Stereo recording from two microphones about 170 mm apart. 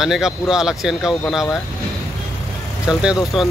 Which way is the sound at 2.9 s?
5° right (ahead or behind).